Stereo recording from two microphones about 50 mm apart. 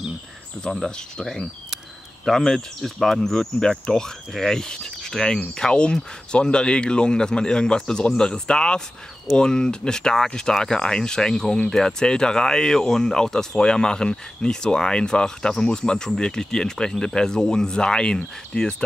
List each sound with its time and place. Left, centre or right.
0.8 s speech: centre